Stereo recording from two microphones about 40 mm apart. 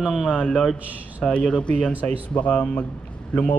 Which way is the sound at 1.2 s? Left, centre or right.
Left.